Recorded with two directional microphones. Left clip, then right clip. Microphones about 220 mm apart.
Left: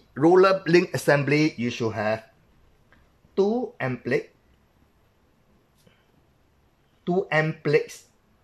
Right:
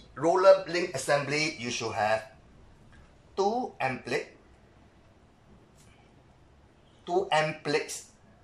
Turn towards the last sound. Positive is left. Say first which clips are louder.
# left 3 dB
turn(degrees=40)  # may be behind; listen again after turning